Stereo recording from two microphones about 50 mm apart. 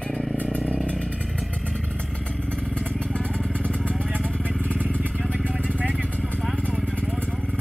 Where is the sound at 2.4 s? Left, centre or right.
Left.